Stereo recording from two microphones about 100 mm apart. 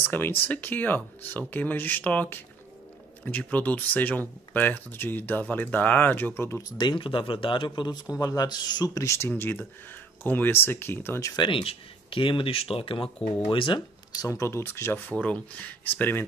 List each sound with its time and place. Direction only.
0.1 s speech: 20° left (ahead or behind)
6.8 s speech: 55° left (ahead or behind)
8.2 s speech: 40° left (ahead or behind)
9.3 s speech: 20° left (ahead or behind)
11.3 s speech: 55° left (ahead or behind)
14.1 s speech: 35° left (ahead or behind)